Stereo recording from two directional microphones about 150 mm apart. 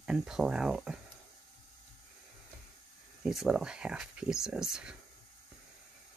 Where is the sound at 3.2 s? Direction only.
5° right (ahead or behind).